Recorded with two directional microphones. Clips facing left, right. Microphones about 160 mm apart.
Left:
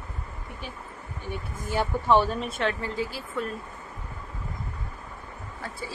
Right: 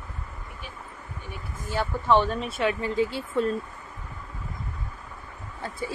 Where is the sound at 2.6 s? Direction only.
15° right (ahead or behind).